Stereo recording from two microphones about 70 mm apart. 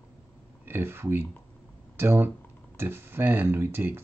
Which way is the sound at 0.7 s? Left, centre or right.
Right.